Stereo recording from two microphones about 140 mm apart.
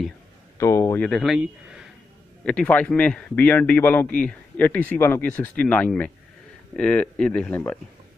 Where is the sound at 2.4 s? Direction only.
10° left (ahead or behind).